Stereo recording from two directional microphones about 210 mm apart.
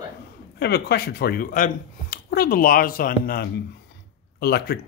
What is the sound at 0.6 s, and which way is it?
Speech, 50° left (ahead or behind).